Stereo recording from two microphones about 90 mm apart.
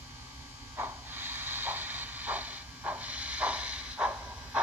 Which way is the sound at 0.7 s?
20° right (ahead or behind).